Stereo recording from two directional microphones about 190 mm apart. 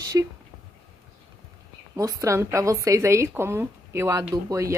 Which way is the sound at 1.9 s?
15° right (ahead or behind).